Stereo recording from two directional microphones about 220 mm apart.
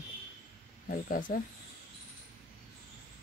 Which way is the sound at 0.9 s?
40° left (ahead or behind).